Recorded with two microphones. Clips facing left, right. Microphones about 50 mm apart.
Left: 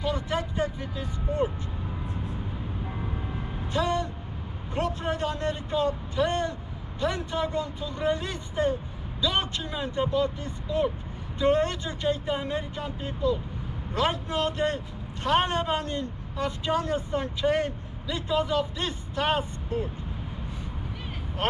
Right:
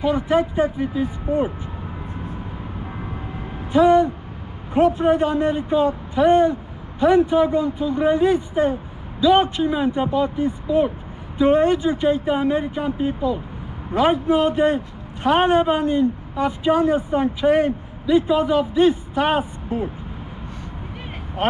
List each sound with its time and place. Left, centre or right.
0.0 s speech: centre
3.7 s speech: centre
21.4 s speech: centre